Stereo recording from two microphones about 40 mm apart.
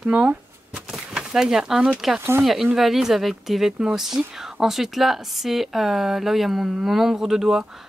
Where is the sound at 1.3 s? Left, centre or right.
Centre.